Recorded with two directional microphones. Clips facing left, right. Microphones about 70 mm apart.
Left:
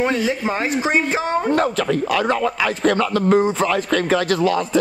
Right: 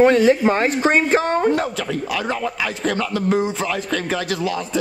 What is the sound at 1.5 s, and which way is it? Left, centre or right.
A man's voice, left.